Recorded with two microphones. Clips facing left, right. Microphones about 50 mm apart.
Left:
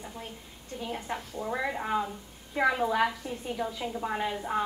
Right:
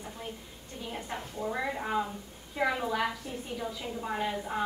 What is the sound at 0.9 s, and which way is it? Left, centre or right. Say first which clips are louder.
A woman's voice: left 2 dB; centre.